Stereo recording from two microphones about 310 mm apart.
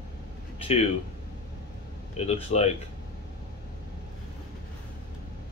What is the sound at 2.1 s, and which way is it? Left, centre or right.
Speech, centre.